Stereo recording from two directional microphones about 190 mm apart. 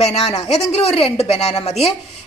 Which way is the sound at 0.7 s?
30° left (ahead or behind).